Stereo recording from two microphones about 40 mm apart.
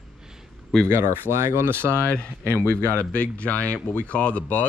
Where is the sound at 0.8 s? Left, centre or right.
Right.